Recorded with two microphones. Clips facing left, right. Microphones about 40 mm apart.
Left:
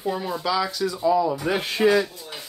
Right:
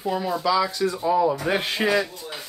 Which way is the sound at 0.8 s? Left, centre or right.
Right.